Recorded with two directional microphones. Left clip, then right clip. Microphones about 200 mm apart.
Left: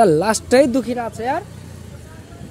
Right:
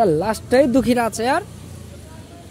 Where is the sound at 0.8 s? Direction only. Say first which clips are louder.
Right 4 dB; 60° right (ahead or behind).